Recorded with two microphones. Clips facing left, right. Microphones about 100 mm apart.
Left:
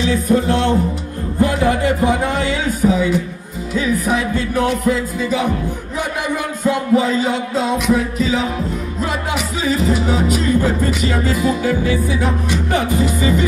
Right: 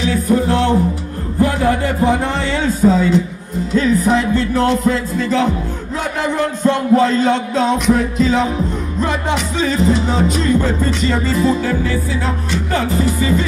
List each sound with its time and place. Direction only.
0.0 s music: 20° left (ahead or behind)
1.4 s a man's voice: 20° left (ahead or behind)
3.7 s music: 10° left (ahead or behind)
6.6 s music: 5° left (ahead or behind)